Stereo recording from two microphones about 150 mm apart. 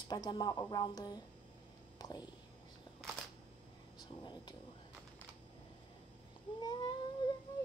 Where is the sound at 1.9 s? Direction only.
25° left (ahead or behind).